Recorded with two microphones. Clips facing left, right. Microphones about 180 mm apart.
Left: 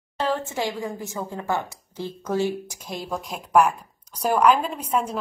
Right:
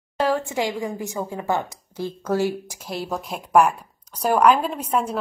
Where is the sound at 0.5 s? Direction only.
15° right (ahead or behind).